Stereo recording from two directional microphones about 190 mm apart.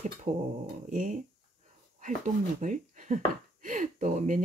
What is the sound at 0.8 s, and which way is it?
Speech, 40° right (ahead or behind).